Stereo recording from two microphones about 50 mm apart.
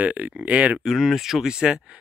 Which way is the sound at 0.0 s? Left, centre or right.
Right.